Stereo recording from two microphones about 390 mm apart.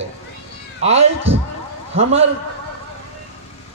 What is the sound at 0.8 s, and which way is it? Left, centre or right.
Speech, centre.